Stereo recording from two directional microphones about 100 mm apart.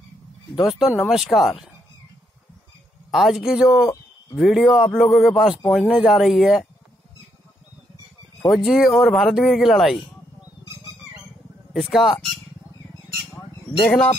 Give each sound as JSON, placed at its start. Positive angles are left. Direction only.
{"t": 0.6, "sound": "speech", "side_deg": -5}
{"t": 3.1, "sound": "speech", "side_deg": 0}
{"t": 8.5, "sound": "speech", "side_deg": 0}
{"t": 11.7, "sound": "speech", "side_deg": 0}
{"t": 13.8, "sound": "speech", "side_deg": 10}